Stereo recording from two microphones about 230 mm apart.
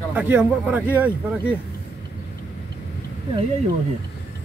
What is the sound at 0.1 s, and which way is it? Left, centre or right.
Speech, centre.